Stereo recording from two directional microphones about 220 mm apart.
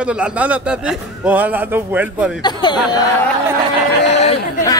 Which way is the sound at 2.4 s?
20° left (ahead or behind).